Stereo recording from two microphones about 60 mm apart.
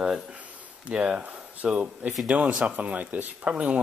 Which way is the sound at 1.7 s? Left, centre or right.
Centre.